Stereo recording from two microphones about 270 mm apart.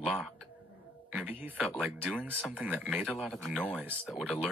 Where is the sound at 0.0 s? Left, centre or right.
Centre.